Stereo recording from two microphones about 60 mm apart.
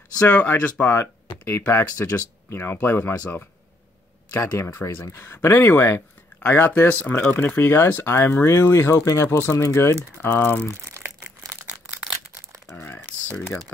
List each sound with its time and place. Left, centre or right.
0.3 s speech: left
1.3 s speech: left
10.2 s speech: left
12.7 s typing: left